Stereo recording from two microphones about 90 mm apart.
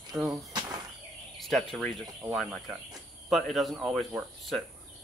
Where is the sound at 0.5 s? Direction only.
50° right (ahead or behind).